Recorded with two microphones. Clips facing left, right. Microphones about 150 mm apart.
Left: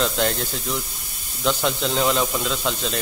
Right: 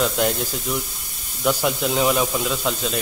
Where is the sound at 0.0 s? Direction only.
5° right (ahead or behind).